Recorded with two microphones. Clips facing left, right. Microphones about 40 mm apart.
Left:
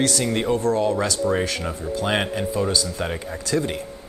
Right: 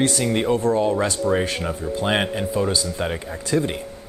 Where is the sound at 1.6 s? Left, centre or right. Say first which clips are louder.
Right 1 dB; centre.